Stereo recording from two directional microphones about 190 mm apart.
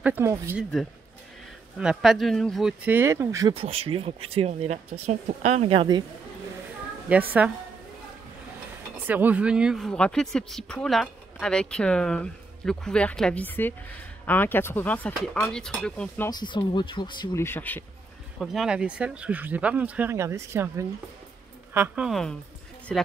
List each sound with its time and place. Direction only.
0.0 s speech: 10° right (ahead or behind)
1.8 s speech: 5° right (ahead or behind)
3.5 s speech: 30° right (ahead or behind)
7.1 s speech: 10° right (ahead or behind)
8.9 s speech: 10° right (ahead or behind)
16.3 s speech: 25° left (ahead or behind)
18.4 s speech: centre (ahead or behind)